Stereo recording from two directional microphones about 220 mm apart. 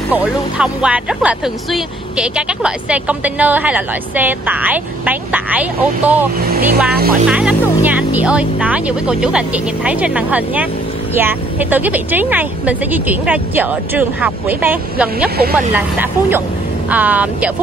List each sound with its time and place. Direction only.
0.1 s speech: 5° right (ahead or behind)
6.9 s speech: 45° right (ahead or behind)
7.2 s speech: 5° right (ahead or behind)
15.3 s speech: 45° right (ahead or behind)
15.7 s speech: 10° right (ahead or behind)